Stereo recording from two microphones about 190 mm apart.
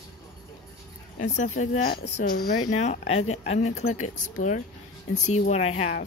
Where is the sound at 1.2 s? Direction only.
40° left (ahead or behind).